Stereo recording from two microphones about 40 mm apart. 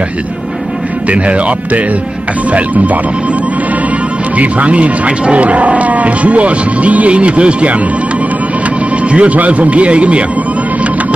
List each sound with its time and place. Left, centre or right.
1.1 s speech: right
4.4 s speech: right
9.1 s speech: right